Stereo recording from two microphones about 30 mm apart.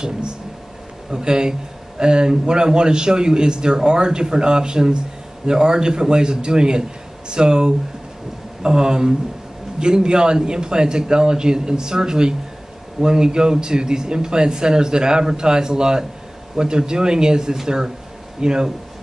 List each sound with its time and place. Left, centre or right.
1.1 s a man's voice: right